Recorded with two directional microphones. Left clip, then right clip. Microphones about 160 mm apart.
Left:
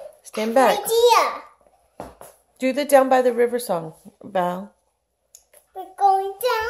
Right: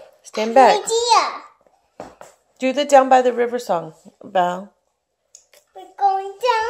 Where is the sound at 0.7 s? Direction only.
45° left (ahead or behind).